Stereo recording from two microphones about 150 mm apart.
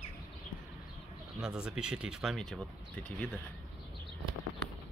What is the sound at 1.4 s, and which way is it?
Speech, 5° right (ahead or behind).